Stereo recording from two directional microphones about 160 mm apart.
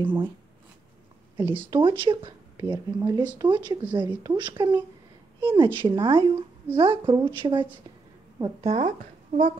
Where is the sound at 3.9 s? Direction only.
25° right (ahead or behind).